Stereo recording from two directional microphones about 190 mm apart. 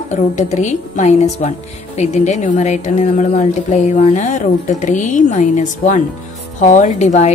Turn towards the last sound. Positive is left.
turn(degrees=35)  # may be behind; listen again after turning